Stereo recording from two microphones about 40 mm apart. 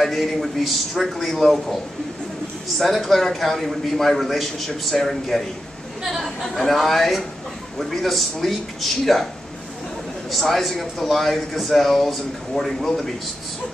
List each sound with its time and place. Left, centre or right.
0.0 s speech: centre
2.8 s speech: centre
10.3 s speech: centre